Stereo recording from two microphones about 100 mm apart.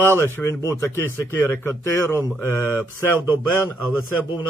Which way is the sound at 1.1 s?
25° left (ahead or behind).